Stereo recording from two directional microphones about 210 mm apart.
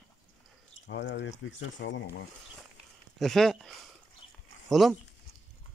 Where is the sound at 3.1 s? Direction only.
Centre (ahead or behind).